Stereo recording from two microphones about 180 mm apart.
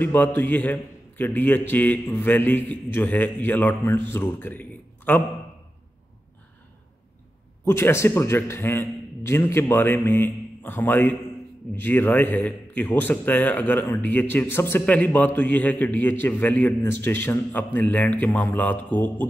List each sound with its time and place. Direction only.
0.0 s a man's voice: 10° left (ahead or behind)
7.6 s a man's voice: 15° left (ahead or behind)